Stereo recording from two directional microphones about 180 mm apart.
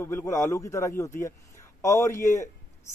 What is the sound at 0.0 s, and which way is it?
A man's voice, 15° left (ahead or behind).